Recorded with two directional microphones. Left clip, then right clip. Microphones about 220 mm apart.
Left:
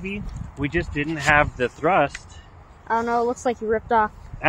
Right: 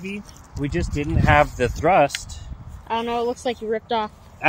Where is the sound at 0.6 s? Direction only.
40° right (ahead or behind).